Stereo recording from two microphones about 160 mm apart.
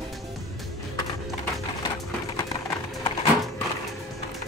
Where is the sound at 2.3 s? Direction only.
20° left (ahead or behind).